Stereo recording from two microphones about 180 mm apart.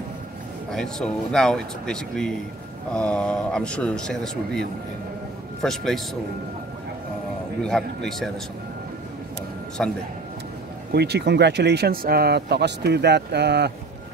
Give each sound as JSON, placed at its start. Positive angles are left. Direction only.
{"t": 0.7, "sound": "speech", "side_deg": 5}
{"t": 7.6, "sound": "speech", "side_deg": 5}
{"t": 9.8, "sound": "speech", "side_deg": 0}
{"t": 10.9, "sound": "speech", "side_deg": -65}